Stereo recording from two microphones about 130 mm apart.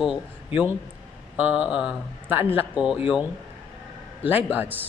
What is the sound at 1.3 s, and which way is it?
Speech, 10° right (ahead or behind).